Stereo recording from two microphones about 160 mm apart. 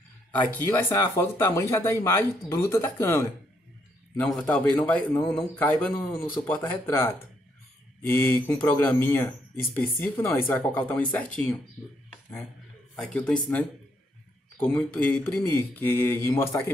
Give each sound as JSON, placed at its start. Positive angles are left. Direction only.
{"t": 0.3, "sound": "speech", "side_deg": 10}
{"t": 12.9, "sound": "speech", "side_deg": 5}
{"t": 14.6, "sound": "speech", "side_deg": 5}